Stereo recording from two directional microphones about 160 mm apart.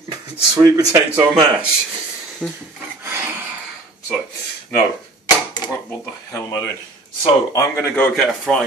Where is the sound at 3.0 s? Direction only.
15° right (ahead or behind).